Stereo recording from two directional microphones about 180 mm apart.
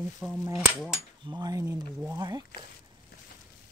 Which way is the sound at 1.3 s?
20° right (ahead or behind).